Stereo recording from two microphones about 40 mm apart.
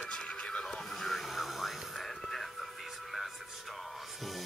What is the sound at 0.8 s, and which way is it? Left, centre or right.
Music, centre.